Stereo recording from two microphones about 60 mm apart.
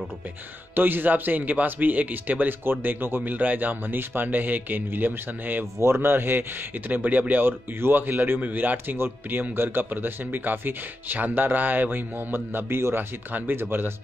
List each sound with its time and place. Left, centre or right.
0.7 s a man's voice: right
5.8 s a man's voice: right